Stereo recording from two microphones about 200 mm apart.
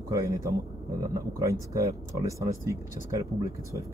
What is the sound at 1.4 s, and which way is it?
Speech, 15° right (ahead or behind).